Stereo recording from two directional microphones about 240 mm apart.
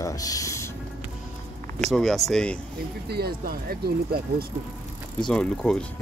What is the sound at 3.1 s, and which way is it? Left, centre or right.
Speech, right.